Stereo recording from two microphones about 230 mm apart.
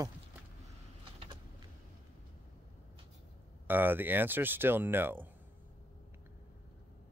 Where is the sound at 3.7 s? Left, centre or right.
Centre.